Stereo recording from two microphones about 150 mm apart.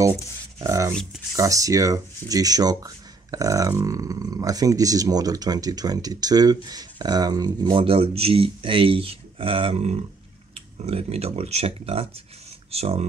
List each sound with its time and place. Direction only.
0.6 s speech: 20° right (ahead or behind)
7.8 s speech: 40° right (ahead or behind)